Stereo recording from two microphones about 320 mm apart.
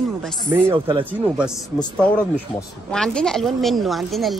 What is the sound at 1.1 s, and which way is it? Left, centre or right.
Speech, centre.